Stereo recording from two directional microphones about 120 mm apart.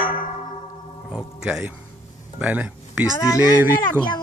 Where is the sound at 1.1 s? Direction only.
5° right (ahead or behind).